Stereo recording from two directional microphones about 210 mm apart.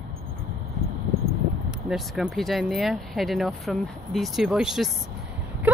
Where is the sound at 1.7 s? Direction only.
Centre (ahead or behind).